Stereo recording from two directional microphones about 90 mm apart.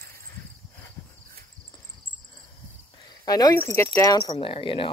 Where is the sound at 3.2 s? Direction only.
45° left (ahead or behind).